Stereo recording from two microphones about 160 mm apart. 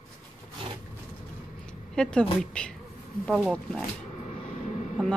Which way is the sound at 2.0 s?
5° left (ahead or behind).